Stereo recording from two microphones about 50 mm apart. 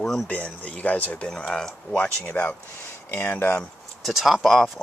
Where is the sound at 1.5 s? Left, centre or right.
Centre.